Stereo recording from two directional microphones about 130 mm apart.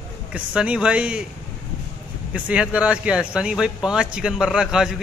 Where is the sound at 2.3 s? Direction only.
10° right (ahead or behind).